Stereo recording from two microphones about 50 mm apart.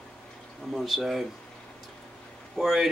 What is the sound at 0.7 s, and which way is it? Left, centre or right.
Speech, centre.